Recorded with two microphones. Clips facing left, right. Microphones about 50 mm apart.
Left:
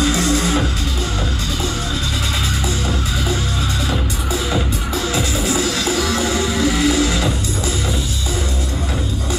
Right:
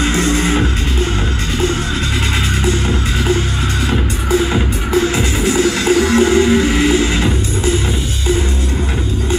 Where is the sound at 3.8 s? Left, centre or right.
Right.